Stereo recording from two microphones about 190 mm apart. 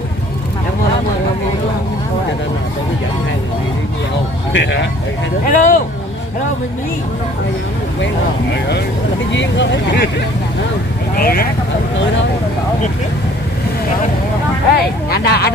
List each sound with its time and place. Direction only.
4.5 s speech: 70° left (ahead or behind)
5.4 s speech: 40° left (ahead or behind)
9.3 s speech: 70° left (ahead or behind)
11.1 s speech: 55° left (ahead or behind)
14.8 s speech: 55° left (ahead or behind)